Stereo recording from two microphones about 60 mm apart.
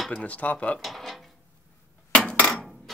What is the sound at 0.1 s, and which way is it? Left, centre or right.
Speech, left.